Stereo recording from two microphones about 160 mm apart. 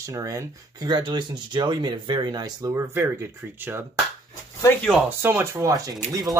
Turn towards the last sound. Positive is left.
turn(degrees=-20)  # may be behind; listen again after turning